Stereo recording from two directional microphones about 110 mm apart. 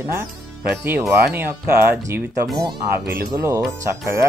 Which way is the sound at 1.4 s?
20° right (ahead or behind).